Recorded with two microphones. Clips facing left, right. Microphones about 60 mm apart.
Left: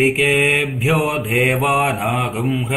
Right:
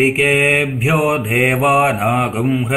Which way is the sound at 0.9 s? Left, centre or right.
Centre.